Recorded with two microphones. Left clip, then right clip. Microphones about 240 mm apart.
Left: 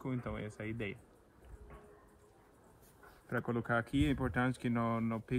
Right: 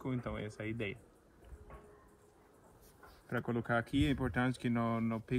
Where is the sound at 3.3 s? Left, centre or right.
Centre.